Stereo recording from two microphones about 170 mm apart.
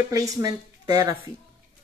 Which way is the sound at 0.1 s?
20° right (ahead or behind).